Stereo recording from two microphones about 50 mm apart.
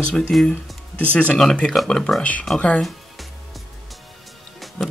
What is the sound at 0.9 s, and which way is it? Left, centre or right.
Speech, left.